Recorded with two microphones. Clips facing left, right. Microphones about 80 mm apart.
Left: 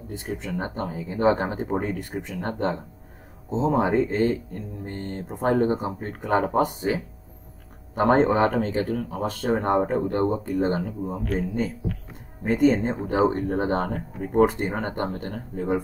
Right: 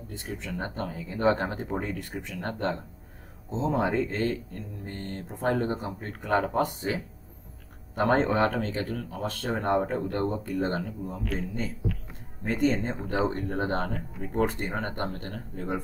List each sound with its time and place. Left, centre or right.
0.1 s speech: centre
12.6 s speech: centre